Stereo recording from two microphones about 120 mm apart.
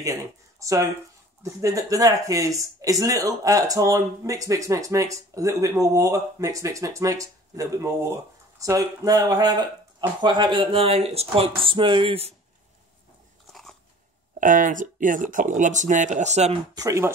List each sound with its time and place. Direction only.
0.0 s speech: 30° right (ahead or behind); by 12.4 s 55° right (ahead or behind)
13.5 s biting: centre (ahead or behind)
14.4 s speech: 90° right; by 16.5 s 70° right (ahead or behind)
16.7 s speech: 25° right (ahead or behind)